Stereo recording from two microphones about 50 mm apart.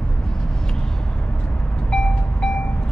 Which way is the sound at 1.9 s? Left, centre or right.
Centre.